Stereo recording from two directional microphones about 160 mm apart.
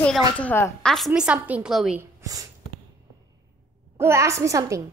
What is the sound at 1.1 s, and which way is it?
Speech, 10° right (ahead or behind).